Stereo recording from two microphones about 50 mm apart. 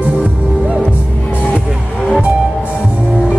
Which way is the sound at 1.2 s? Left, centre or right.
Left.